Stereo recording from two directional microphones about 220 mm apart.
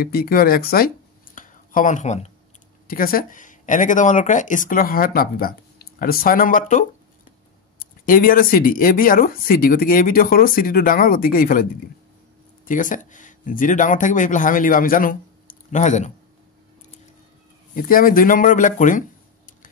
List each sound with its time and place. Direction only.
0.0 s speech: 45° left (ahead or behind)
2.9 s speech: 40° left (ahead or behind)
12.6 s speech: 35° left (ahead or behind)
17.7 s speech: 40° left (ahead or behind)